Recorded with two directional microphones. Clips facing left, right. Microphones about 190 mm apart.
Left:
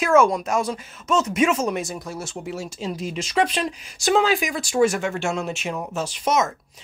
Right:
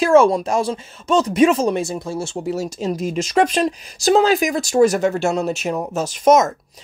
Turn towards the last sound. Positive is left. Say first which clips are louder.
# right 8 dB
turn(degrees=-45)  # may be behind; listen again after turning